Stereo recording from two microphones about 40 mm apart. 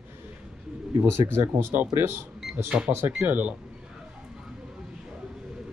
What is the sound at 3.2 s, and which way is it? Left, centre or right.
Speech, right.